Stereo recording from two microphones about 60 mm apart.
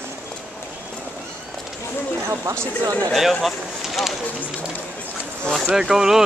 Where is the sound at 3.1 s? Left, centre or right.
Centre.